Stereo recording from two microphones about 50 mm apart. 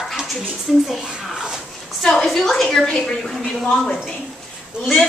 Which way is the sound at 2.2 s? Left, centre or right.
Centre.